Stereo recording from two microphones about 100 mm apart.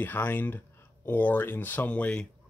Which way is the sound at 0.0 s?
20° left (ahead or behind).